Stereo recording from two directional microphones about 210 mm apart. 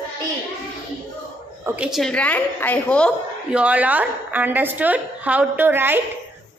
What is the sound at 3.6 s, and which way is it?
A woman's voice, 5° right (ahead or behind).